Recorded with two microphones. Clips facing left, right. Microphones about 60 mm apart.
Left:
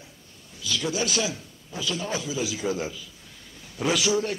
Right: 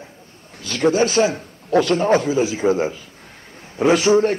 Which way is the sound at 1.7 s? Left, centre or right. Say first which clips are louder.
Right 15 dB; right.